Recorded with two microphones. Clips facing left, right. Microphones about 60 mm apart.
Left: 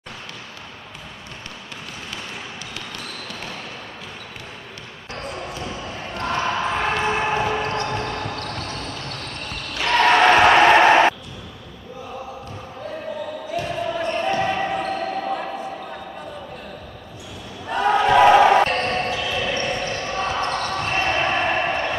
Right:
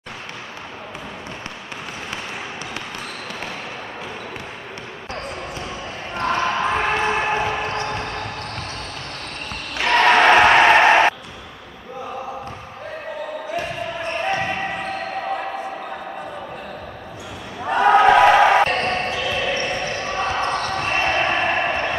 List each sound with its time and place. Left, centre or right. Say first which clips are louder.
3.3 s basketball bounce: right 3 dB; right
6.1 s basketball bounce: right 3 dB; centre
9.8 s basketball bounce: right 1 dB; right
13.6 s basketball bounce: left 4 dB; right
17.6 s a sound: right 5 dB; right
18.2 s music: even; centre
18.8 s basketball bounce: right 1 dB; centre